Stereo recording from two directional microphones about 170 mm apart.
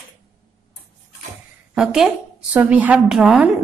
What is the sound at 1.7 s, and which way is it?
A woman's voice, 5° right (ahead or behind).